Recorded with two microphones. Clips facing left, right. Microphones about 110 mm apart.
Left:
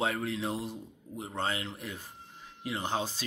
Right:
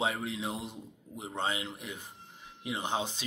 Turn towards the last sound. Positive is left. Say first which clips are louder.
# left 1 dB
turn(degrees=-20)  # may be behind; listen again after turning